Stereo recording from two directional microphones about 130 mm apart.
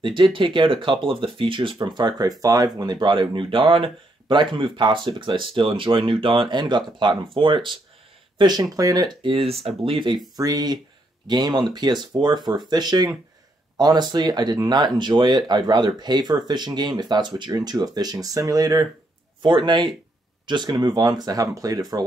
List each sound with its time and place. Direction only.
0.0 s speech: 40° right (ahead or behind)